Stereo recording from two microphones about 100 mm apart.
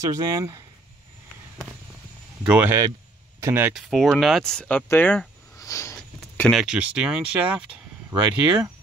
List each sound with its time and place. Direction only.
0.1 s speech: 40° right (ahead or behind)
2.4 s speech: 15° right (ahead or behind)
3.7 s speech: centre (ahead or behind)
4.8 s speech: 20° left (ahead or behind)
5.6 s a sound: 30° left (ahead or behind)
5.9 s a sound: 15° left (ahead or behind)
6.5 s speech: 10° right (ahead or behind)